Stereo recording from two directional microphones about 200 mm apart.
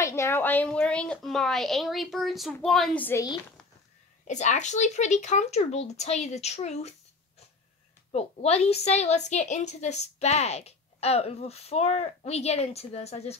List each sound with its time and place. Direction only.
0.0 s a woman's voice: 15° left (ahead or behind)
4.3 s a woman's voice: 35° left (ahead or behind)
8.1 s a woman's voice: 30° left (ahead or behind)